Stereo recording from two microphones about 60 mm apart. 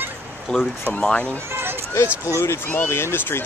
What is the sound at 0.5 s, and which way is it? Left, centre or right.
Speech, centre.